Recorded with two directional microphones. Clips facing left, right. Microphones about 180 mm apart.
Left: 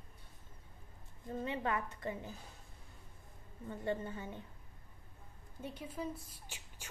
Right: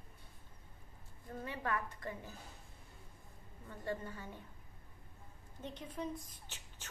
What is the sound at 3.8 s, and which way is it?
Speech, 20° left (ahead or behind).